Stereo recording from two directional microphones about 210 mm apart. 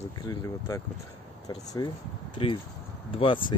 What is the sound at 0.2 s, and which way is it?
Speech, 15° left (ahead or behind).